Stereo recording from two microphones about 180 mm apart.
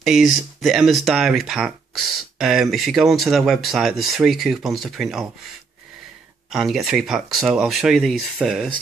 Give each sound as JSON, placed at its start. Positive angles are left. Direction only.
{"t": 0.0, "sound": "speech", "side_deg": 0}
{"t": 6.5, "sound": "speech", "side_deg": 0}